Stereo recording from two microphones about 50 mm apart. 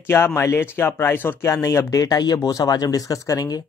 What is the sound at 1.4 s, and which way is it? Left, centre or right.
Speech, left.